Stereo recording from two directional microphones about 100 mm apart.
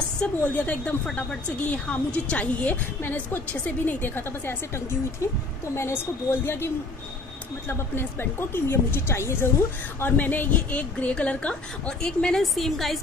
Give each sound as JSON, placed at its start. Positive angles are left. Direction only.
{"t": 0.2, "sound": "a woman's voice", "side_deg": 15}
{"t": 6.4, "sound": "a woman's voice", "side_deg": 25}